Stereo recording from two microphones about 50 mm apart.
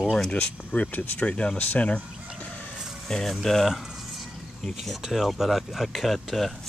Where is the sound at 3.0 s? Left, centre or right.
Centre.